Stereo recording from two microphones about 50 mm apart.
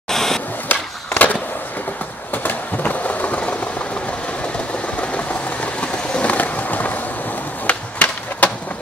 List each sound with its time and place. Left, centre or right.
0.1 s a sound: centre
0.7 s skateboard: left
2.3 s train: left
5.0 s vehicle: left
7.6 s skateboard: left